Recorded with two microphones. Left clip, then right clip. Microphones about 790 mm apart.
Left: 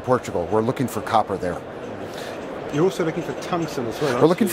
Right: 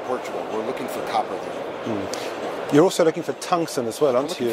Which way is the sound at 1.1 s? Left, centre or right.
Left.